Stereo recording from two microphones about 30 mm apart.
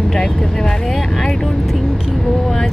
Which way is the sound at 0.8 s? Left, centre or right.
Centre.